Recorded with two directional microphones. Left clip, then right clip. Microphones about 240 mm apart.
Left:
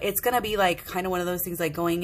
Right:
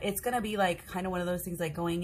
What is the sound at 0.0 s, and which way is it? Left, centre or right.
Speech, left.